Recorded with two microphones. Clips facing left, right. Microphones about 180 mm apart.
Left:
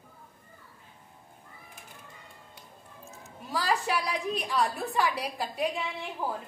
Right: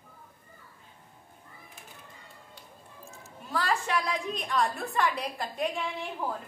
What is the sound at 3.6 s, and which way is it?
A woman's voice, 5° left (ahead or behind).